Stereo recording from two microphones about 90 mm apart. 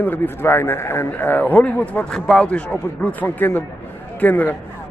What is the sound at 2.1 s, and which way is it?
A man's voice, 5° left (ahead or behind).